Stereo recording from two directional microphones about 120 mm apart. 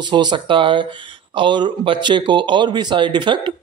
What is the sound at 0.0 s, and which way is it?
Speech, 40° right (ahead or behind).